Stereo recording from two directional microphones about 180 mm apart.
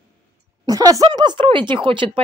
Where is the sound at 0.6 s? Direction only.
20° right (ahead or behind).